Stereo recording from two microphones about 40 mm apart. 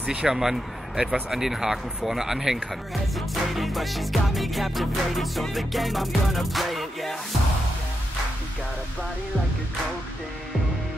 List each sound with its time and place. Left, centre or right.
0.0 s speech: right
0.3 s speech: centre
3.2 s music: centre